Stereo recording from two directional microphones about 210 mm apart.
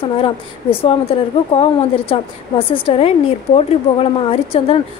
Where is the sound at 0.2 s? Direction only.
25° left (ahead or behind).